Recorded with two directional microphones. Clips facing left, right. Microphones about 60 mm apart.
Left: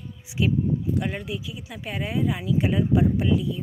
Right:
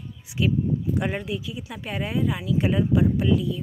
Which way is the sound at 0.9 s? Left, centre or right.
Centre.